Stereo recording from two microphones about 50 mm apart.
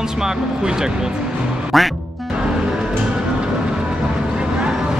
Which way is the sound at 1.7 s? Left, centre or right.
Centre.